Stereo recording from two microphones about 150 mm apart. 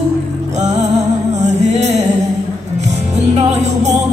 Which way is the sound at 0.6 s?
50° right (ahead or behind).